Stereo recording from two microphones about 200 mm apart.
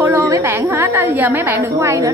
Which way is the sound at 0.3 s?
10° right (ahead or behind).